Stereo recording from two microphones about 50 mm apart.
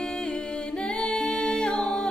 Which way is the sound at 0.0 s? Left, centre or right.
Centre.